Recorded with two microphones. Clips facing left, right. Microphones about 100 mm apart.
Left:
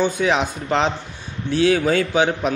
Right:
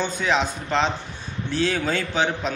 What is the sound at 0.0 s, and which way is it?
A man's voice, 15° left (ahead or behind).